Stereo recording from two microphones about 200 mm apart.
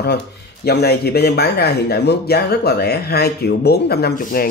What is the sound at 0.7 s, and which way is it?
Speech, 50° left (ahead or behind).